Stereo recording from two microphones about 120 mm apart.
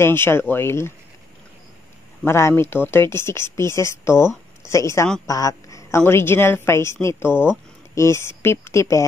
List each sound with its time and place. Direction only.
0.0 s a woman's voice: 20° left (ahead or behind)
2.2 s a woman's voice: 20° left (ahead or behind)